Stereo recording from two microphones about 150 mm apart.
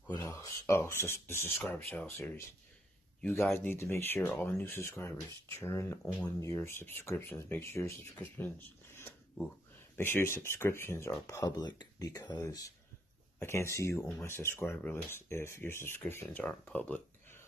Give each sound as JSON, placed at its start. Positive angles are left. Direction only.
{"t": 0.2, "sound": "speech", "side_deg": 20}
{"t": 3.5, "sound": "speech", "side_deg": 15}